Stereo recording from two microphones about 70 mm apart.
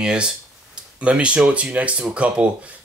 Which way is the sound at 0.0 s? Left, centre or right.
Centre.